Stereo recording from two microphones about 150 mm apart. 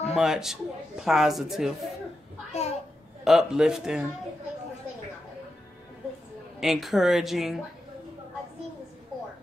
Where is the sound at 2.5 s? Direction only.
45° left (ahead or behind).